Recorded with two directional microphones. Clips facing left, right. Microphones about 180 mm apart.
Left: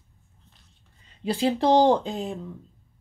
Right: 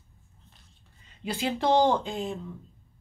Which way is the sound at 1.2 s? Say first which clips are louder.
Left 5 dB; 35° left (ahead or behind).